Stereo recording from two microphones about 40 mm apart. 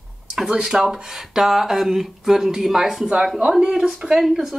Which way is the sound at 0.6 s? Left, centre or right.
Centre.